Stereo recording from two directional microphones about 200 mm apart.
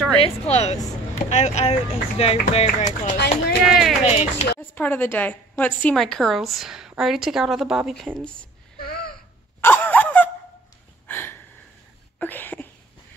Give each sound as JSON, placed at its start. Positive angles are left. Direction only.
{"t": 0.2, "sound": "speech", "side_deg": 30}
{"t": 3.6, "sound": "a woman's voice", "side_deg": 0}
{"t": 4.0, "sound": "speech", "side_deg": 30}
{"t": 4.6, "sound": "a woman's voice", "side_deg": 10}
{"t": 8.7, "sound": "a sound", "side_deg": 50}
{"t": 9.6, "sound": "a sound", "side_deg": 10}